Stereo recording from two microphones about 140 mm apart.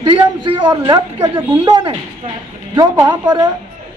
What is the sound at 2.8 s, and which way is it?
Speech, 30° right (ahead or behind).